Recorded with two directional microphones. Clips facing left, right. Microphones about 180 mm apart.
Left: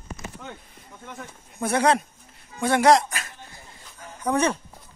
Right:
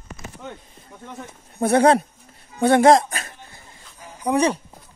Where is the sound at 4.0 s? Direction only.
10° right (ahead or behind).